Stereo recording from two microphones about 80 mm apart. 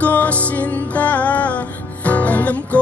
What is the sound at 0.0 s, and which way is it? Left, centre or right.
Music, centre.